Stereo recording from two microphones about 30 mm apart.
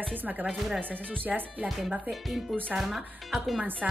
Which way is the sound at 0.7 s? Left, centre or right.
Right.